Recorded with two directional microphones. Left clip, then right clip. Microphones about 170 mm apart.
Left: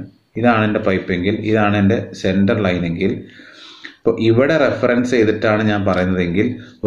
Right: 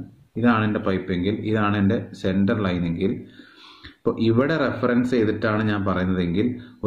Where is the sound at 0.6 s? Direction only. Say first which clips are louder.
Left 7 dB; 45° right (ahead or behind).